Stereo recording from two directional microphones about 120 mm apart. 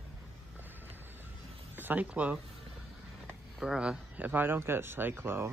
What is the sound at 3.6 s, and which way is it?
Speech, 5° right (ahead or behind).